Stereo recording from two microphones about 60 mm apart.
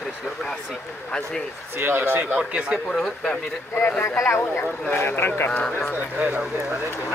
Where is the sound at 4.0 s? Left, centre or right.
Left.